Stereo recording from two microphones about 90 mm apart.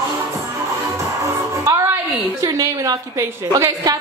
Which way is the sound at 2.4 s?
45° right (ahead or behind).